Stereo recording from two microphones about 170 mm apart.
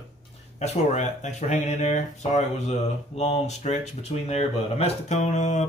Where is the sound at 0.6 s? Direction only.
45° left (ahead or behind).